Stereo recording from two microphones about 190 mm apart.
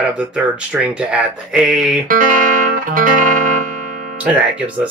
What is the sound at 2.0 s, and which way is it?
Music, 45° right (ahead or behind).